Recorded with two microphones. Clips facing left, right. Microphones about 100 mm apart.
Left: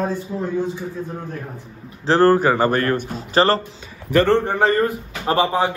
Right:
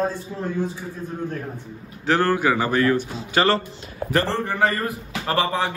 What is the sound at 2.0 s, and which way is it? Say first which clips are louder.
A man's voice: left 5 dB; 35° left (ahead or behind).